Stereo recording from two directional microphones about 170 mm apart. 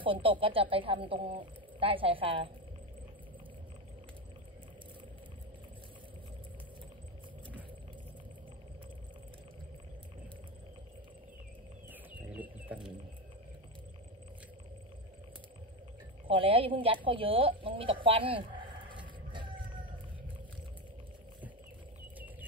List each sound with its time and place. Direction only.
0.0 s speech: 30° right (ahead or behind)
11.9 s cricket: 10° right (ahead or behind)
16.3 s speech: 30° right (ahead or behind)
19.3 s a sound: 30° right (ahead or behind)